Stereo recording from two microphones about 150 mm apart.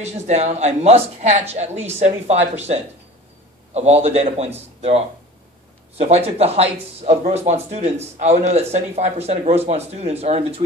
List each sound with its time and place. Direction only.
0.0 s speech: 45° right (ahead or behind)